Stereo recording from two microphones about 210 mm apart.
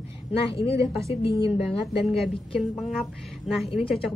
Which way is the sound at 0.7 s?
15° right (ahead or behind).